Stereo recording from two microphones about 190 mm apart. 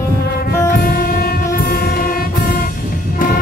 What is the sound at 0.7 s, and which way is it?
Train, 50° left (ahead or behind).